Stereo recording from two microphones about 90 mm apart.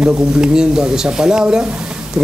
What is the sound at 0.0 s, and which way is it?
A man's voice, 10° right (ahead or behind).